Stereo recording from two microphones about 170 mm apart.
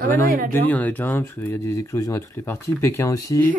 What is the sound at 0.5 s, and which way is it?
Speech, 10° left (ahead or behind).